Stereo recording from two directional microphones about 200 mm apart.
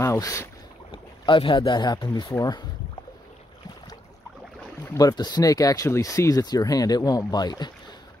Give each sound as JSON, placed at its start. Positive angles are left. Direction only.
{"t": 0.0, "sound": "speech", "side_deg": 15}
{"t": 0.9, "sound": "speech", "side_deg": 25}
{"t": 4.9, "sound": "speech", "side_deg": 20}